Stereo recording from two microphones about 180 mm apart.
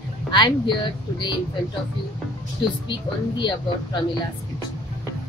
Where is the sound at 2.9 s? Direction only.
25° left (ahead or behind).